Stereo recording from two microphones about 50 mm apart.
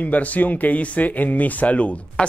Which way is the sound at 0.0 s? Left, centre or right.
Left.